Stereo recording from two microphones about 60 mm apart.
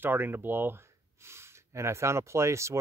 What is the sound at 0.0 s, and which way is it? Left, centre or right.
Speech, right.